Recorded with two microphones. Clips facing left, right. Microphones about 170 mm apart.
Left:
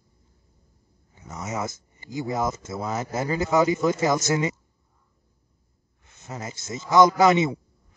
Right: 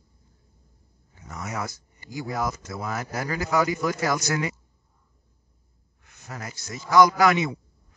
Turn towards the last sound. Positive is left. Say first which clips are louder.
# left 3 dB
turn(degrees=25)  # may be behind; listen again after turning